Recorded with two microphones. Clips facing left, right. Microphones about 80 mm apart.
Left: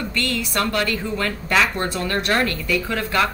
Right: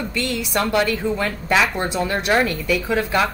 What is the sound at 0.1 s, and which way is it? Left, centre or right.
A woman's voice, centre.